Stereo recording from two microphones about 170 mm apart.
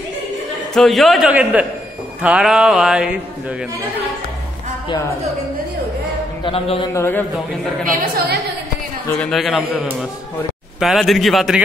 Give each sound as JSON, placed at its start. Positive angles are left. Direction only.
{"t": 0.7, "sound": "a man's voice", "side_deg": 0}
{"t": 6.4, "sound": "music", "side_deg": 30}
{"t": 6.9, "sound": "speech", "side_deg": 15}
{"t": 7.8, "sound": "a woman's voice", "side_deg": -55}
{"t": 9.2, "sound": "a man's voice", "side_deg": 0}
{"t": 10.8, "sound": "a man's voice", "side_deg": 0}